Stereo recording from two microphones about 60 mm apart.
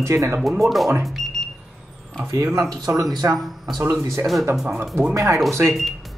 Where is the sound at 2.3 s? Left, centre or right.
Right.